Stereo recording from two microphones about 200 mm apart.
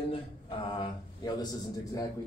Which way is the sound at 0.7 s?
20° left (ahead or behind).